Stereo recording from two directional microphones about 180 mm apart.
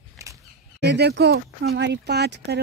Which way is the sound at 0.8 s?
65° right (ahead or behind).